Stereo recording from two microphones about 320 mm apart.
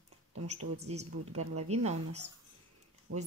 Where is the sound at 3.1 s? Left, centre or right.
Right.